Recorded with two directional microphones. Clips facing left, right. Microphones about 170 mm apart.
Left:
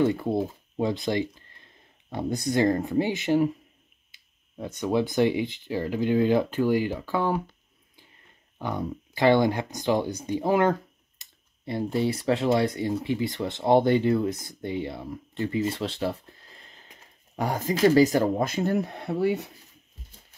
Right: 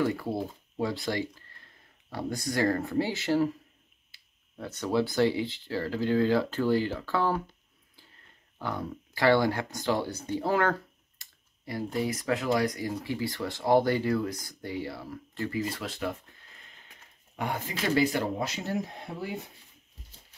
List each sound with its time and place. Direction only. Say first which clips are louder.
0.0 s speech: left 5 dB; 20° left (ahead or behind)
8.5 s speech: left 4 dB; 20° left (ahead or behind); by 19.5 s 70° left (ahead or behind)